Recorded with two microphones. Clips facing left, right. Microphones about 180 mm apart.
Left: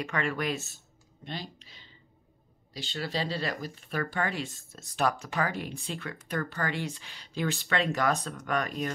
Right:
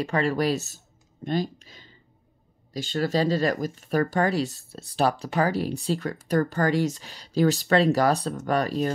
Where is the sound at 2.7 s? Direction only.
45° right (ahead or behind).